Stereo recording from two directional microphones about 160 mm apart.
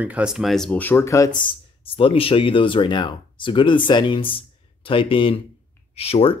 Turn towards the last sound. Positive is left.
turn(degrees=35)  # may be behind; listen again after turning